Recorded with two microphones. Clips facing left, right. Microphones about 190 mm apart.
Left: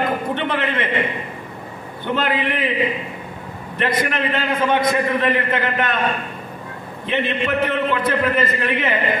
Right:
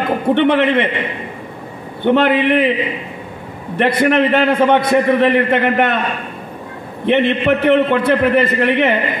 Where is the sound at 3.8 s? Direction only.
65° right (ahead or behind).